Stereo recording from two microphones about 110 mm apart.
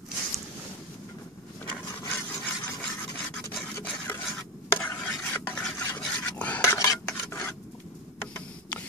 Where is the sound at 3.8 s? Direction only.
20° left (ahead or behind).